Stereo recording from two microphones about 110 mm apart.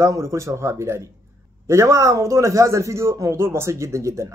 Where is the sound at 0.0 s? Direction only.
30° right (ahead or behind).